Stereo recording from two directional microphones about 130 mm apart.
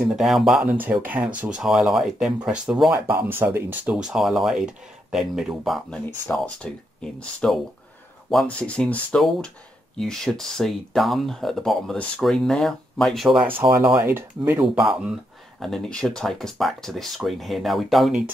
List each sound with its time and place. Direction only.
0.0 s speech: 5° right (ahead or behind)
0.7 s speech: 15° right (ahead or behind)
3.2 s speech: 15° right (ahead or behind)
3.9 s speech: 5° right (ahead or behind)
13.6 s speech: 25° right (ahead or behind)
14.6 s speech: 5° right (ahead or behind)